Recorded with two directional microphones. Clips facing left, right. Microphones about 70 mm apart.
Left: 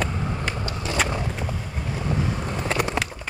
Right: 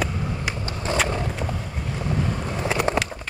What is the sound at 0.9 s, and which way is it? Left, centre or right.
Vehicle, right.